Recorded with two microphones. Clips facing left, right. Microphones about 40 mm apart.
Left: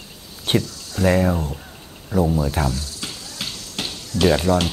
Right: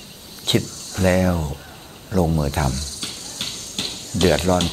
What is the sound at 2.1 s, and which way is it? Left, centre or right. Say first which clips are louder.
Speech: even; right.